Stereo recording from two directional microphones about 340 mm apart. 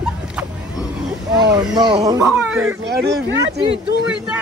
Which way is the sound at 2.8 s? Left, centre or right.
Right.